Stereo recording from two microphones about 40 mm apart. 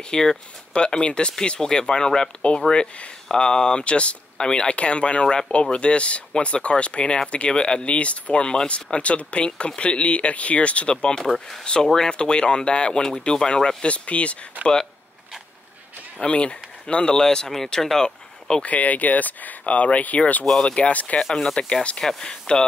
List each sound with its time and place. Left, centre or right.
0.1 s speech: centre
11.1 s speech: centre
11.6 s speech: centre
13.8 s speech: left
16.2 s speech: left
18.6 s speech: left
20.5 s speech: left
20.9 s speech: left
21.2 s speech: centre